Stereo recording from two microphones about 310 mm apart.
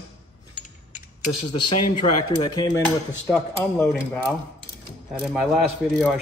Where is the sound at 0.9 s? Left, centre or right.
Left.